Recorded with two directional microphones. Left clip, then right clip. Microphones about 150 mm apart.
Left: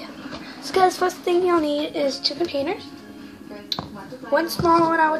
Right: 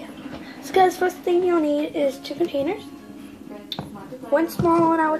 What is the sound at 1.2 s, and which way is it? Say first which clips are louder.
Speech: even; centre (ahead or behind).